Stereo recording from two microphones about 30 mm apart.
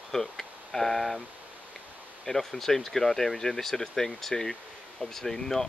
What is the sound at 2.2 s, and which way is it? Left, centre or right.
Speech, centre.